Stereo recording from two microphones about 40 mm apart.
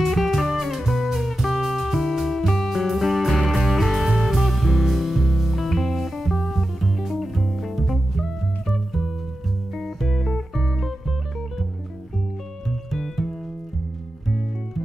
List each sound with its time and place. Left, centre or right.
0.0 s music: centre
12.9 s music: centre